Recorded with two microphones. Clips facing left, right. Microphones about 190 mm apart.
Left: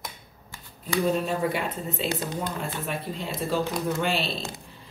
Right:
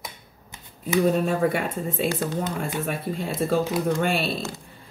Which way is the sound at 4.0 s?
50° right (ahead or behind).